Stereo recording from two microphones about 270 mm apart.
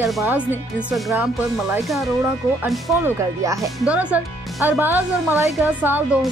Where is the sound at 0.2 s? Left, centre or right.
Centre.